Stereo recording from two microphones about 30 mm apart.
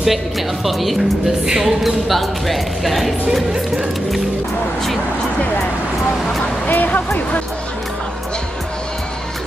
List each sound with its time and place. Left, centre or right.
0.7 s speech: centre
1.4 s a sound: right
1.8 s speech: centre
6.7 s speech: left